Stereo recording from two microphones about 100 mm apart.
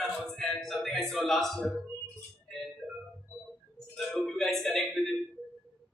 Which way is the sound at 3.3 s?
20° left (ahead or behind).